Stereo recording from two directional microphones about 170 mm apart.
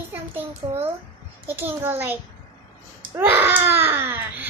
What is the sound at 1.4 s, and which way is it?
Speech, 10° right (ahead or behind).